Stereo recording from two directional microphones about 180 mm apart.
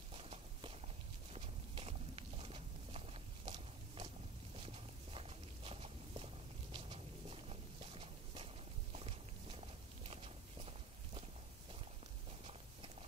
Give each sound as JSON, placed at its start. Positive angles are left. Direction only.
{"t": 0.1, "sound": "walk", "side_deg": -35}
{"t": 1.3, "sound": "clip-clop", "side_deg": -35}
{"t": 4.6, "sound": "walk", "side_deg": -30}